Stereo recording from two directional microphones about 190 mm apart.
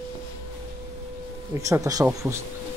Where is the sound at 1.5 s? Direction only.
15° right (ahead or behind).